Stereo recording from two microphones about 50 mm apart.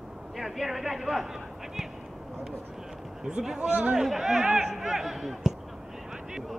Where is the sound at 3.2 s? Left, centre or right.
Centre.